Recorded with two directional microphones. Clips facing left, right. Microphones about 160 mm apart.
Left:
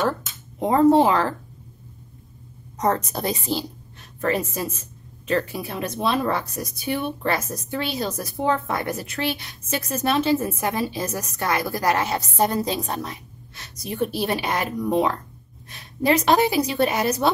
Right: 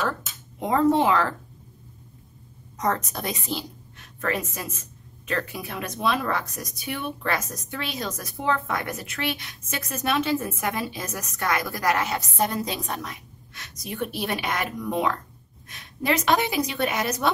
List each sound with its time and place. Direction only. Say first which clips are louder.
0.6 s speech: left 5 dB; 35° left (ahead or behind)
2.8 s a woman's voice: left 4 dB; 30° left (ahead or behind)